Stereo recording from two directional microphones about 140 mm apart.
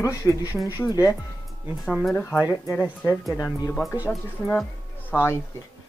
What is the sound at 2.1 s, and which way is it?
Speech, 15° left (ahead or behind).